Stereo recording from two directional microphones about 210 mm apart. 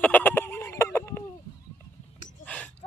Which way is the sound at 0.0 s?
10° left (ahead or behind).